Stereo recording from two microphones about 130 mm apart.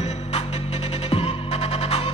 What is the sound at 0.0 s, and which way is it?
Music, 50° left (ahead or behind).